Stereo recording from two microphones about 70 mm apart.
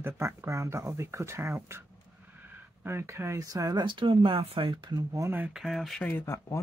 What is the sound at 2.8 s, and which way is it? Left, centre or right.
Speech, right.